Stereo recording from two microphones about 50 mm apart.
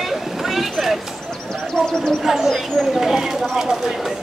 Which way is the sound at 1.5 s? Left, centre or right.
Centre.